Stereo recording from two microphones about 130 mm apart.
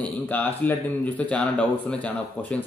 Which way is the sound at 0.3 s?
15° left (ahead or behind).